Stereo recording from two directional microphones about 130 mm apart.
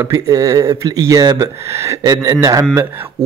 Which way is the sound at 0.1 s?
25° right (ahead or behind).